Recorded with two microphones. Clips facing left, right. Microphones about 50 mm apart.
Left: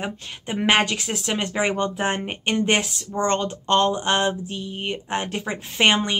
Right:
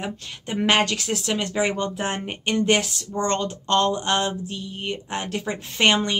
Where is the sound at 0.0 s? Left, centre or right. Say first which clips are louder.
Left 1 dB; centre.